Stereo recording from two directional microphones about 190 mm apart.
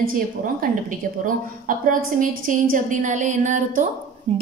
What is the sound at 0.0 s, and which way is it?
A woman's voice, 50° right (ahead or behind).